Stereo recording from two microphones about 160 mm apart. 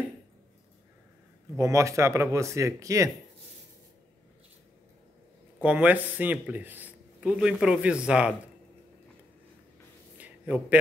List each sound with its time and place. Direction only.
1.6 s speech: 20° right (ahead or behind)
5.6 s speech: 10° right (ahead or behind)
10.1 s a sound: 10° right (ahead or behind)